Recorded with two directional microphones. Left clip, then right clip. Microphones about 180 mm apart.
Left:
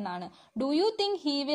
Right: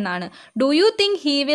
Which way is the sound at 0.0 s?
25° right (ahead or behind).